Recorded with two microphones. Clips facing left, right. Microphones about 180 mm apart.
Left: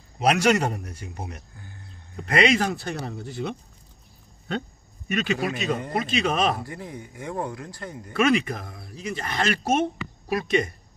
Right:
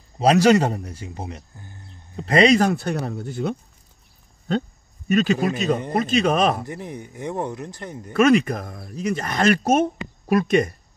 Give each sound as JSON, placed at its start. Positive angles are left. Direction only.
{"t": 0.2, "sound": "speech", "side_deg": -30}
{"t": 4.5, "sound": "speech", "side_deg": -35}
{"t": 6.6, "sound": "speech", "side_deg": -20}
{"t": 8.1, "sound": "speech", "side_deg": -45}